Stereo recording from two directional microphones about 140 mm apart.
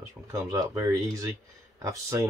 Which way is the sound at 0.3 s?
20° right (ahead or behind).